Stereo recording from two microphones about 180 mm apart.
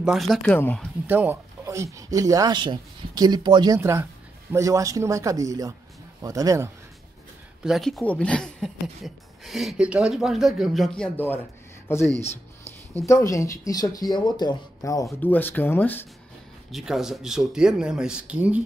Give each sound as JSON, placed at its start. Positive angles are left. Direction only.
{"t": 0.0, "sound": "speech", "side_deg": 0}
{"t": 1.0, "sound": "speech", "side_deg": -10}
{"t": 7.6, "sound": "speech", "side_deg": 0}
{"t": 16.7, "sound": "speech", "side_deg": 0}